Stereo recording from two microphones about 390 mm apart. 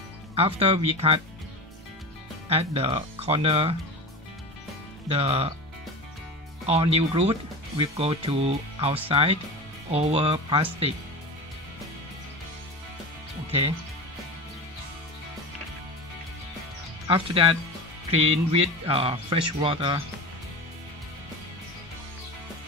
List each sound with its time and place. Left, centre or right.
0.4 s speech: centre
2.5 s speech: centre
5.0 s speech: centre
6.6 s speech: centre
13.5 s speech: centre
17.1 s speech: centre